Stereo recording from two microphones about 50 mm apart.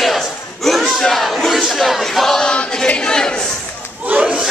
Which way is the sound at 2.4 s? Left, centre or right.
Left.